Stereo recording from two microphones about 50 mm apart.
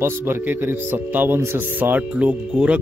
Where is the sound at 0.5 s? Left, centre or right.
Right.